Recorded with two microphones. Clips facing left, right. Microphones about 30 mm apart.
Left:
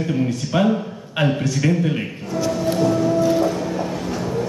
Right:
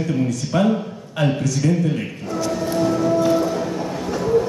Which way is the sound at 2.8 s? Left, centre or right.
Centre.